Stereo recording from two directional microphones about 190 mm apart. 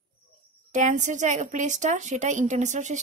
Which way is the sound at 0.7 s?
40° right (ahead or behind).